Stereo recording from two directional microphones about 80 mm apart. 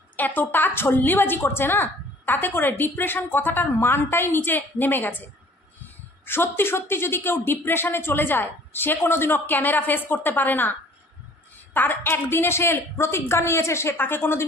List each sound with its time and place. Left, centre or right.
0.1 s a woman's voice: left
6.2 s a woman's voice: left